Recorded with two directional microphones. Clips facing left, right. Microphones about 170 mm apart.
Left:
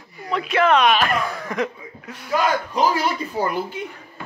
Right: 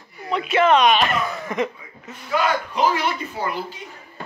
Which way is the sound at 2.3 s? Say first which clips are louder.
Left 1 dB; 40° left (ahead or behind).